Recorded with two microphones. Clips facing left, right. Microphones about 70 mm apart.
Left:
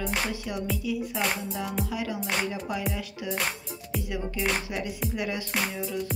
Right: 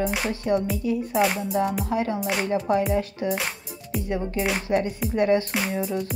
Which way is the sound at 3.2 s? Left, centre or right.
Right.